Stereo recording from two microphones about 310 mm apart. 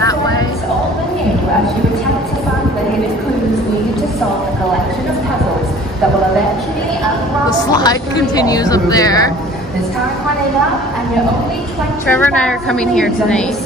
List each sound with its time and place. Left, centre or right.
7.7 s a woman's voice: centre
12.1 s a woman's voice: centre